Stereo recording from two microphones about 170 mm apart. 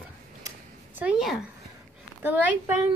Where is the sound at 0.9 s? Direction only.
5° right (ahead or behind).